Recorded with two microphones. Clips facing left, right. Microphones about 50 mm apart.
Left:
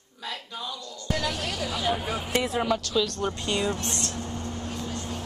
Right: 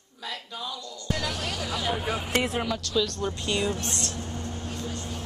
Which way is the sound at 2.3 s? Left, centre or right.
Right.